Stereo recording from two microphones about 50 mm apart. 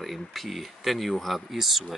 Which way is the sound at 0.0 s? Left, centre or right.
Centre.